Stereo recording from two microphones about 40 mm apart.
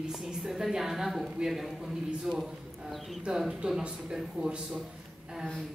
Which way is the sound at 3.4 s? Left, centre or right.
Centre.